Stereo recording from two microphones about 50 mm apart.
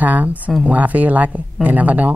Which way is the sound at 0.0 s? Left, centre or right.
Right.